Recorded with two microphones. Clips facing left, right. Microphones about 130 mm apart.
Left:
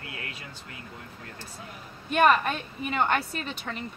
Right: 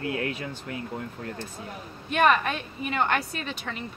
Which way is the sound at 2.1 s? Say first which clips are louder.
Even; centre (ahead or behind).